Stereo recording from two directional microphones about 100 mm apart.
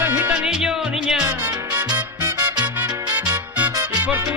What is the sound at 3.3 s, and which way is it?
Music, 15° right (ahead or behind).